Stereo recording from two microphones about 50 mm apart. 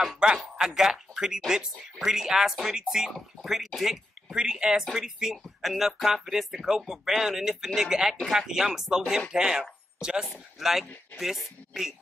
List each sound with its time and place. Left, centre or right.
0.2 s speech: centre
2.0 s speech: centre
10.3 s speech: centre